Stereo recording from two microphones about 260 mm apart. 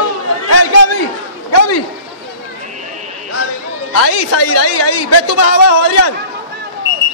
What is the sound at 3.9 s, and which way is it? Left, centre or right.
A man's voice, left.